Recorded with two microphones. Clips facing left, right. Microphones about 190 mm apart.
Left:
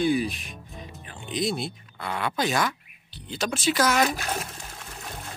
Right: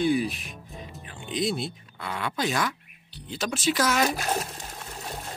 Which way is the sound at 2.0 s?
65° left (ahead or behind).